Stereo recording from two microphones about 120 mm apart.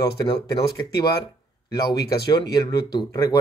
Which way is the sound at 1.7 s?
35° left (ahead or behind).